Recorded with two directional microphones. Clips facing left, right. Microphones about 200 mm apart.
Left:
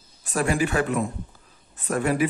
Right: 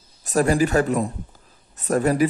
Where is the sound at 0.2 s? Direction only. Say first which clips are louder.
Right 5 dB; 40° right (ahead or behind).